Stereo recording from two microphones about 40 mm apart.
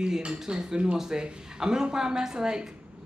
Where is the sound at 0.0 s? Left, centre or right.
Centre.